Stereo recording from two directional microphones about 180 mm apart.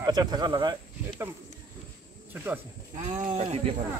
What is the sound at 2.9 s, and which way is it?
Speech, 40° right (ahead or behind).